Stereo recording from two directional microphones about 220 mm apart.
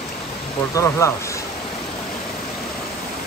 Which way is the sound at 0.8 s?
15° left (ahead or behind).